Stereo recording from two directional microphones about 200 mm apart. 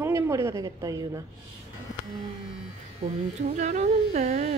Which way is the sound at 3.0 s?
35° right (ahead or behind).